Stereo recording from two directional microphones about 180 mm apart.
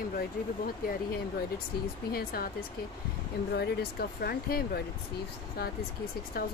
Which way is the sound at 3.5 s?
60° left (ahead or behind).